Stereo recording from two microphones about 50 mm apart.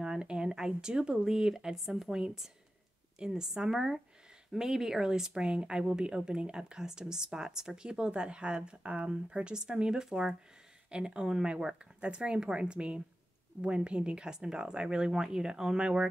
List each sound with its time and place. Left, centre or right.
0.0 s a woman's voice: centre